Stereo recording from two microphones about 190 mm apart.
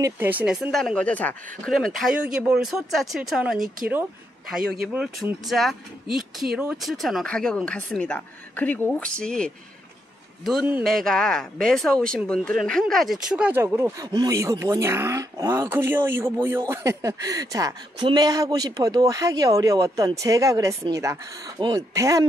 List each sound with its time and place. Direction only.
0.0 s speech: 10° right (ahead or behind)
10.7 s speech: centre (ahead or behind); by 22.2 s 15° right (ahead or behind)